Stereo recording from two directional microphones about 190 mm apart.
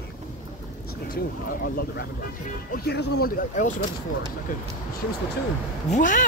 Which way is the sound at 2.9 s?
55° left (ahead or behind).